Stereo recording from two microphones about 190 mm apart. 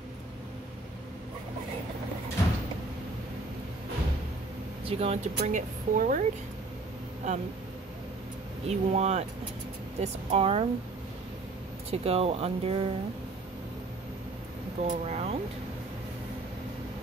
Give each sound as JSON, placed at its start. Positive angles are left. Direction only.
{"t": 4.8, "sound": "speech", "side_deg": -30}
{"t": 7.2, "sound": "speech", "side_deg": -40}
{"t": 8.6, "sound": "speech", "side_deg": -35}
{"t": 11.9, "sound": "speech", "side_deg": -30}
{"t": 14.8, "sound": "speech", "side_deg": -35}